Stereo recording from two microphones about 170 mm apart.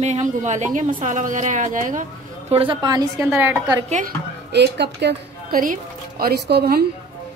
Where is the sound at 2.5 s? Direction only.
30° right (ahead or behind); by 3.8 s 10° right (ahead or behind).